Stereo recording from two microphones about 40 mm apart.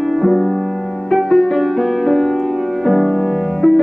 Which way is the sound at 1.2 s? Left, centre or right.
Centre.